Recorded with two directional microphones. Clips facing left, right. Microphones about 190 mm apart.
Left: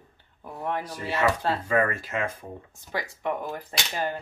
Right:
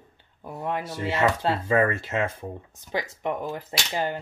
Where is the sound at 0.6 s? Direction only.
20° right (ahead or behind).